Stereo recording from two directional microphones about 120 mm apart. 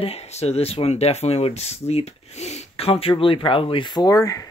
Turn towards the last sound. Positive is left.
turn(degrees=30)  # may be behind; listen again after turning